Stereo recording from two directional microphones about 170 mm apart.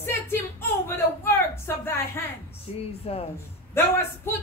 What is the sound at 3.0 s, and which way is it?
Speech, 40° left (ahead or behind).